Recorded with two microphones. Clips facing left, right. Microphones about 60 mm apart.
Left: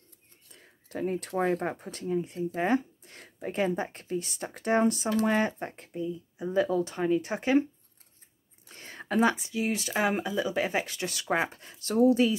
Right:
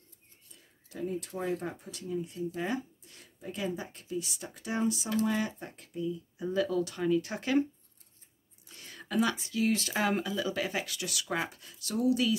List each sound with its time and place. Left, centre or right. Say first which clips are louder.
0.5 s speech: left 7 dB; left
8.6 s speech: left 6 dB; left